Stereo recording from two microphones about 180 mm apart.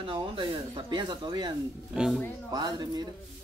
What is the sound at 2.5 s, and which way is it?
Speech, 20° right (ahead or behind).